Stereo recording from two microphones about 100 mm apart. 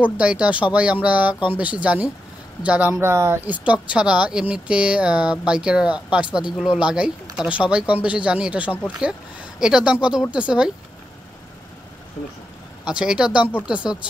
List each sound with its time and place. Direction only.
0.0 s speech: 10° right (ahead or behind)
2.9 s speech: 25° right (ahead or behind)
3.5 s speech: 15° right (ahead or behind)
12.8 s speech: 10° right (ahead or behind)